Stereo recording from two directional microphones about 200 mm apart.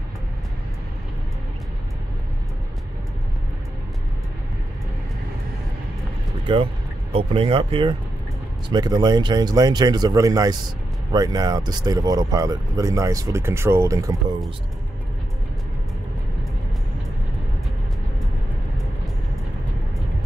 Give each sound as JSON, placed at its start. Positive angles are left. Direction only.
{"t": 6.4, "sound": "speech", "side_deg": -25}